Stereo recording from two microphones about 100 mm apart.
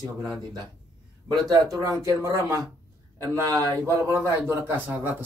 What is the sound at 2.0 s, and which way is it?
A man's voice, 30° right (ahead or behind).